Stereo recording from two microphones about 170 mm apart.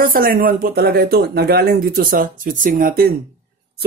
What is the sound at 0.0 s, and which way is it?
Speech, 55° right (ahead or behind).